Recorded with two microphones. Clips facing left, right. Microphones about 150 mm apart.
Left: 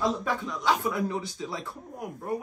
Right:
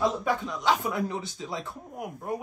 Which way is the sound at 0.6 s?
25° right (ahead or behind).